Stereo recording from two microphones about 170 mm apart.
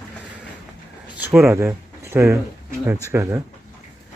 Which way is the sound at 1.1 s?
10° right (ahead or behind).